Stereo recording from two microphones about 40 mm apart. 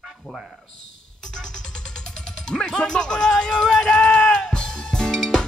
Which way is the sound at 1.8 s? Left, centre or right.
Centre.